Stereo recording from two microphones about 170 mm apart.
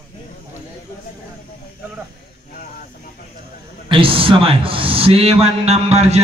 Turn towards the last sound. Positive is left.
turn(degrees=-40)  # may be behind; listen again after turning